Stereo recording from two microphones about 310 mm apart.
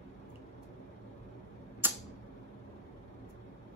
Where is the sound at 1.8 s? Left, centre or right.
Centre.